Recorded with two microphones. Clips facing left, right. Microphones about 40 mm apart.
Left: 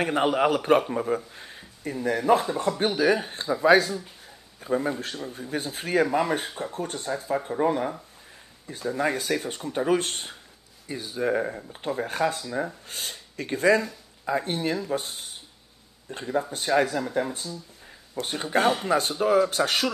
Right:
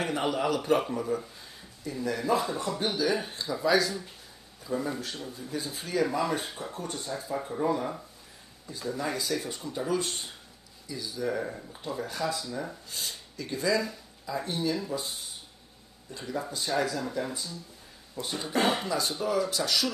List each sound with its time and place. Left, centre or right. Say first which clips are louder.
0.0 s a man's voice: left 6 dB; left